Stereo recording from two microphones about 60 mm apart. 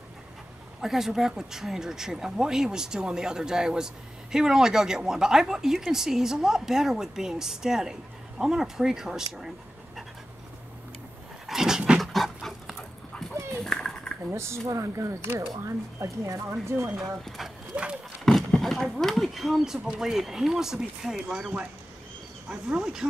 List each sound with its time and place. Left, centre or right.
0.7 s speech: centre
11.4 s dog: centre
12.0 s dog: centre
13.6 s a sound: centre
14.3 s speech: right
17.7 s a sound: right
18.2 s speech: centre
22.5 s speech: centre